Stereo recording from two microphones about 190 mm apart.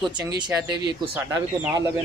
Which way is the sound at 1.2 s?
10° right (ahead or behind).